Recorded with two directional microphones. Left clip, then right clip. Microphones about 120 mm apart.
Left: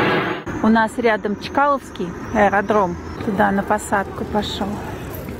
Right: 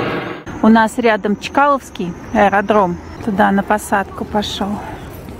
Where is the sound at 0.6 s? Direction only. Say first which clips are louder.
Right 5 dB; 40° right (ahead or behind).